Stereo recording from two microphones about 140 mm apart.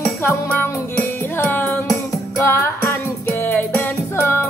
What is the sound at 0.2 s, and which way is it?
Music, 15° left (ahead or behind).